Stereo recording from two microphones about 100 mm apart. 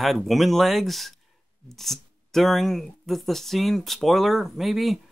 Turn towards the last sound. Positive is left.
turn(degrees=0)  # may be behind; listen again after turning